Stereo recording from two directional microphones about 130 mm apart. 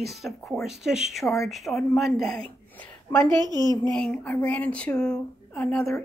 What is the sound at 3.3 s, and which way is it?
Speech, 30° right (ahead or behind).